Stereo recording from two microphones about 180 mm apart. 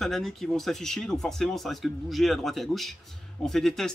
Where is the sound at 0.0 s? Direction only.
Centre (ahead or behind).